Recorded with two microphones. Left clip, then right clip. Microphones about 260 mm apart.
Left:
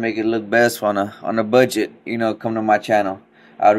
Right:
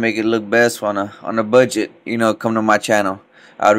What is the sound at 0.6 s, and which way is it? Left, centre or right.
Speech, centre.